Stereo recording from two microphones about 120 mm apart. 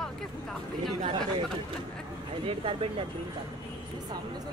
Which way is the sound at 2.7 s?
50° right (ahead or behind).